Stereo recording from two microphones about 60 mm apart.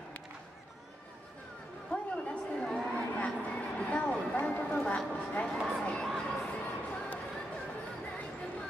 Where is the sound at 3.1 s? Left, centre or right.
Left.